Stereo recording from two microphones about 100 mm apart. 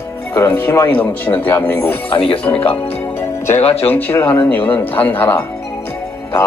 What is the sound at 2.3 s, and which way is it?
Speech, 65° left (ahead or behind).